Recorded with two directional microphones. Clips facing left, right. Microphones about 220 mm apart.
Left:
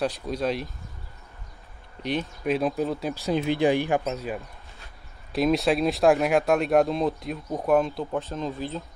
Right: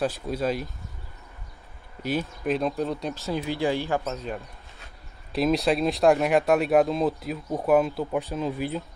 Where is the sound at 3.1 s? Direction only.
20° left (ahead or behind).